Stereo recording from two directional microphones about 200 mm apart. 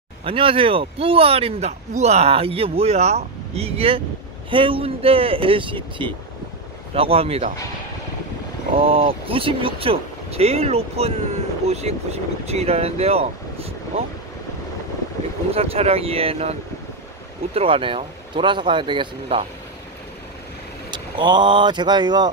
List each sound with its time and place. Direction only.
0.2 s speech: 25° right (ahead or behind)
8.7 s speech: 30° right (ahead or behind)
15.5 s speech: 30° right (ahead or behind)
17.6 s speech: 25° right (ahead or behind)
20.9 s speech: 20° right (ahead or behind)